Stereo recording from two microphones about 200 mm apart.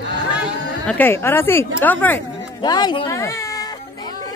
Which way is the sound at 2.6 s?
20° left (ahead or behind).